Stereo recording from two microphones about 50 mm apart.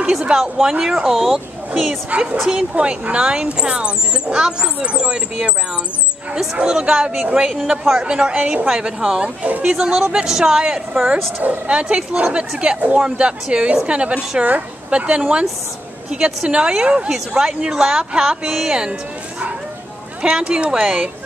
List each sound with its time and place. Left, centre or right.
0.1 s speech: centre
2.1 s speech: right
9.4 s speech: right
9.7 s speech: centre
11.4 s speech: right
20.2 s speech: centre